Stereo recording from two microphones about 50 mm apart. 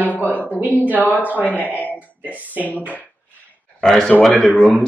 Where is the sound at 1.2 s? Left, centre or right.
Right.